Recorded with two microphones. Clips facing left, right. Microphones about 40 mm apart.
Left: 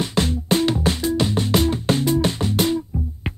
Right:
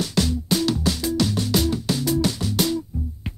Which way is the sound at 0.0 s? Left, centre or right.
Left.